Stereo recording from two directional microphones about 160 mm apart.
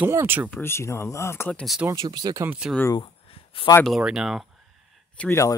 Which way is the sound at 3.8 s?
5° right (ahead or behind).